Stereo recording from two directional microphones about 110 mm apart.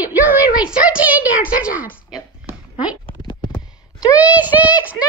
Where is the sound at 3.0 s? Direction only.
45° left (ahead or behind).